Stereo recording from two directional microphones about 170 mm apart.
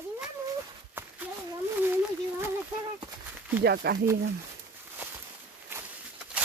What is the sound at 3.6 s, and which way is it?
Speech, 70° right (ahead or behind).